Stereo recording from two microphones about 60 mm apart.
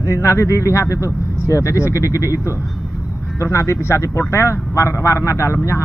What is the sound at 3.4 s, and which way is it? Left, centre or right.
A man's voice, left.